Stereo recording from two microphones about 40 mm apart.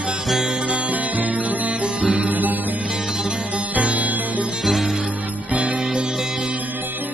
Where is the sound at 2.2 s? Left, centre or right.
Right.